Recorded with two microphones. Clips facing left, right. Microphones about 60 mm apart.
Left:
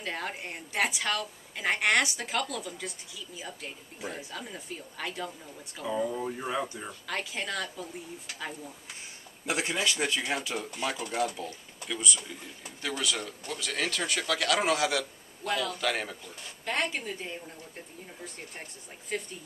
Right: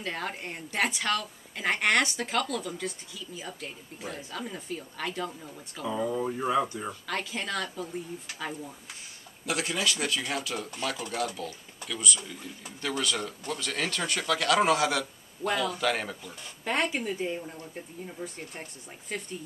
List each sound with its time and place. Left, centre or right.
0.0 s speech: centre
9.5 s speech: left
12.8 s speech: centre
16.6 s speech: centre
19.1 s speech: centre